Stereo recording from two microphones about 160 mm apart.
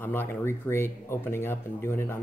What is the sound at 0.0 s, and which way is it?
Speech, 15° left (ahead or behind).